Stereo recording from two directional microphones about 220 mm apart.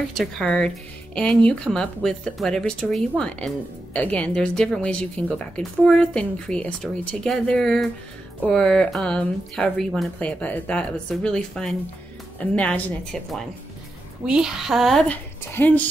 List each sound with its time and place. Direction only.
0.2 s speech: centre (ahead or behind)